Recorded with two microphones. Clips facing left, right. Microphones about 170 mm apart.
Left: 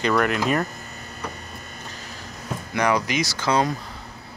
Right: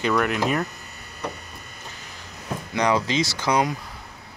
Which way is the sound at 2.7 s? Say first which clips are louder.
Even; 20° right (ahead or behind).